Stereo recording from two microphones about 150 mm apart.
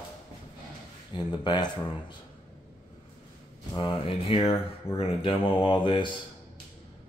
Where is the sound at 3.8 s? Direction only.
35° left (ahead or behind).